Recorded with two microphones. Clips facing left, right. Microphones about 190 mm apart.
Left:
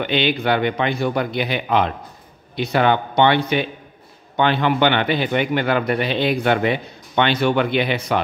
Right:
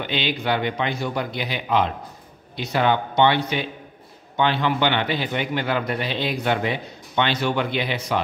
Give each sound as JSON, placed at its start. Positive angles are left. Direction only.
{"t": 0.0, "sound": "a man's voice", "side_deg": 60}